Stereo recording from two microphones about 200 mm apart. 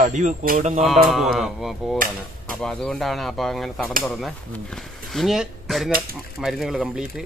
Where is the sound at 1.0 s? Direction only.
Centre (ahead or behind).